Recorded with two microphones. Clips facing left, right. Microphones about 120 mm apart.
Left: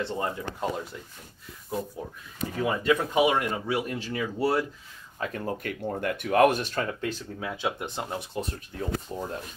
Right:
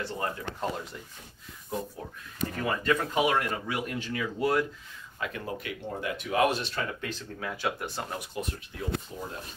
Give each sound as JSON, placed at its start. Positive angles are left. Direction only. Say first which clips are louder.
{"t": 0.0, "sound": "speech", "louder": "left 3 dB", "side_deg": 20}
{"t": 2.0, "sound": "speech", "louder": "even", "side_deg": 5}
{"t": 7.0, "sound": "speech", "louder": "left 4 dB", "side_deg": 20}
{"t": 9.1, "sound": "speech", "louder": "left 5 dB", "side_deg": 50}